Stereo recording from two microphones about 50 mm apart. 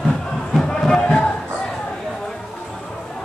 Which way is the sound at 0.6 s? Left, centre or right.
Centre.